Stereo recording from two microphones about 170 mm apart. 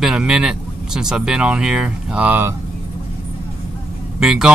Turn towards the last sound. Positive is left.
turn(degrees=-5)  # may be behind; listen again after turning